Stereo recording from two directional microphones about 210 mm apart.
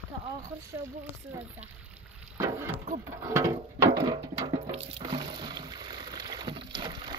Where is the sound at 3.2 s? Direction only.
15° right (ahead or behind).